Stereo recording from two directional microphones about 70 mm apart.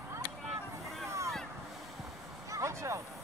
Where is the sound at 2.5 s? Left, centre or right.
Right.